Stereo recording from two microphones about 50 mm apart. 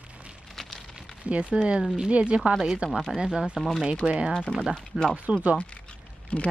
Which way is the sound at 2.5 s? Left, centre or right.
Centre.